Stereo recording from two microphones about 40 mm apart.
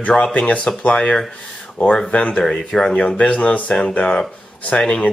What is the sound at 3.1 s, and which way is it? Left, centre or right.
Speech, left.